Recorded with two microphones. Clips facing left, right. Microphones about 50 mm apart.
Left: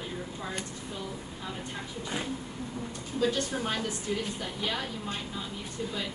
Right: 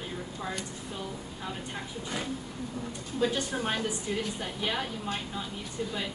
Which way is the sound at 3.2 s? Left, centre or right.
Centre.